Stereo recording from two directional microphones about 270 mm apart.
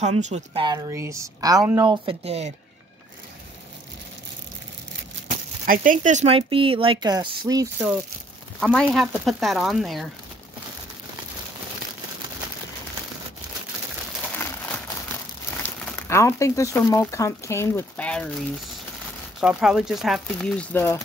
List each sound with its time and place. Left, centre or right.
0.0 s a woman's voice: right
5.7 s speech: right; by 8.0 s centre
8.5 s speech: centre
14.3 s crumpling: centre
15.8 s speech: centre
19.4 s speech: centre